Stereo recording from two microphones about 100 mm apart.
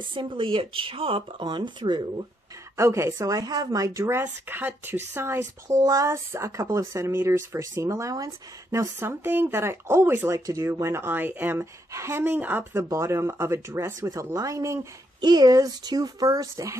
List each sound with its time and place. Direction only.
0.0 s speech: 55° right (ahead or behind)
2.8 s speech: 30° right (ahead or behind)
4.2 s speech: 20° right (ahead or behind)
9.0 s speech: 20° right (ahead or behind)
15.1 s speech: 45° right (ahead or behind)